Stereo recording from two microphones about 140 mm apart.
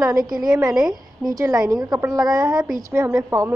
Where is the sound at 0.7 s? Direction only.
5° right (ahead or behind).